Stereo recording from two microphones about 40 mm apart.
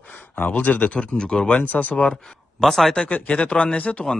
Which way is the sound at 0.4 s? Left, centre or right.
Left.